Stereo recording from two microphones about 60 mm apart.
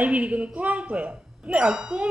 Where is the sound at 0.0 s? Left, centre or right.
Right.